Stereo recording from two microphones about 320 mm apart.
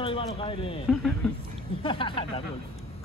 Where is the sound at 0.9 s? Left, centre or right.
Centre.